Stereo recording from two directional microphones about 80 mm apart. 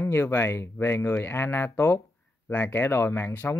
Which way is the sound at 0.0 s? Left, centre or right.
Left.